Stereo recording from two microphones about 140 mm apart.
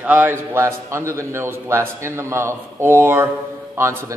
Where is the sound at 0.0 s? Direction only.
15° right (ahead or behind).